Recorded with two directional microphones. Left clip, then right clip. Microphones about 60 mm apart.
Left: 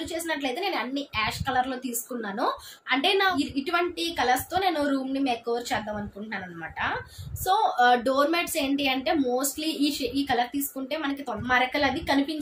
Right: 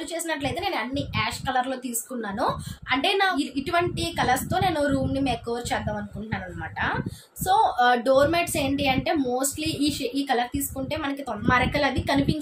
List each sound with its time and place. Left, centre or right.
0.1 s a woman's voice: right